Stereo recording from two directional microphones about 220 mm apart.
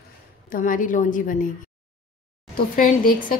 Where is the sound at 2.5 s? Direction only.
40° left (ahead or behind).